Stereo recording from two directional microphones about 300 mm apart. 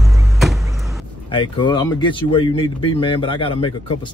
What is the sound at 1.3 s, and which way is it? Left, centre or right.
Speech, centre.